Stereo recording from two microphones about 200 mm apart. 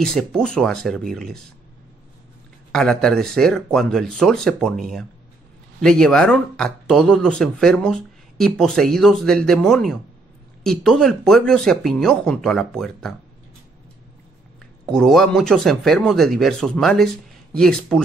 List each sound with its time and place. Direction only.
0.0 s speech: centre (ahead or behind)
2.7 s speech: 5° left (ahead or behind)
14.9 s speech: centre (ahead or behind)